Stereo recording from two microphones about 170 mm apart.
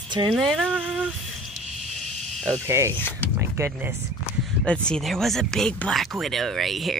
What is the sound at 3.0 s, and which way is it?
Speech, 15° left (ahead or behind).